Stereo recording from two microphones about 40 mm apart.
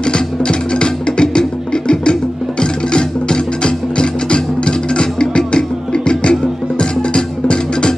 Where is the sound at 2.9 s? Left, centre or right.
Left.